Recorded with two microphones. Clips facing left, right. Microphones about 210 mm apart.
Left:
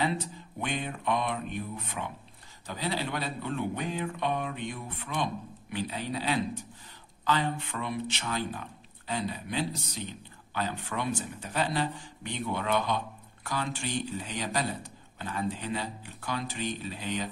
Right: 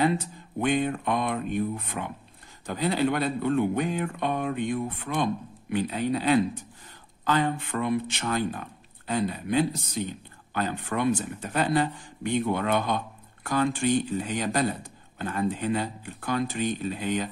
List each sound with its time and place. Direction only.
0.6 s speech: 50° right (ahead or behind)